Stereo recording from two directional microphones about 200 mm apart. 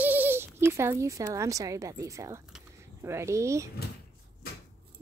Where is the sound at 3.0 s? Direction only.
15° right (ahead or behind).